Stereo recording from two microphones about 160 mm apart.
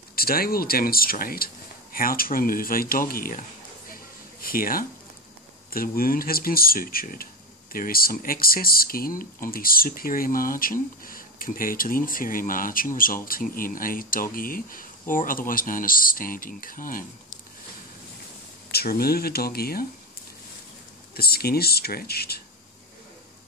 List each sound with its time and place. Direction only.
0.1 s speech: 70° left (ahead or behind)
3.9 s a sound: 65° left (ahead or behind)
5.7 s speech: 65° left (ahead or behind)
18.7 s speech: 75° left (ahead or behind)
21.1 s speech: 75° left (ahead or behind)